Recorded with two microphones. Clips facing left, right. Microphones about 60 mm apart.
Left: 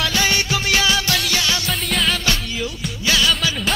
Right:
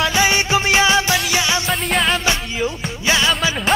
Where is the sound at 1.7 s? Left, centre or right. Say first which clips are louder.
Right 3 dB; centre.